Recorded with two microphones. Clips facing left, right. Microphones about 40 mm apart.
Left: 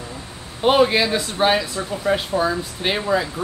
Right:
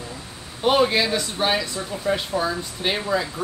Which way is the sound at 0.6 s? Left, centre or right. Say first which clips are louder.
Left 3 dB; centre.